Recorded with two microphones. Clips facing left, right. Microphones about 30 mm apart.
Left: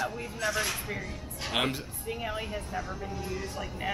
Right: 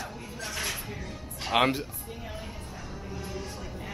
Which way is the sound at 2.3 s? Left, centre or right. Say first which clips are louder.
Left 6 dB; left.